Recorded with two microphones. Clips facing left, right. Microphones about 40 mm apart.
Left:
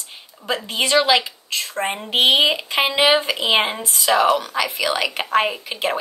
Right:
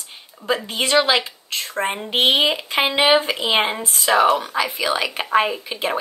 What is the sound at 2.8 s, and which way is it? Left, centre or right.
Speech, centre.